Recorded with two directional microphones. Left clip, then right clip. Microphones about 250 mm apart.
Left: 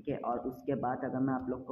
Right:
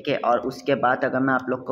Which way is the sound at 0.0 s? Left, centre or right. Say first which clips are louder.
Right 14 dB; right.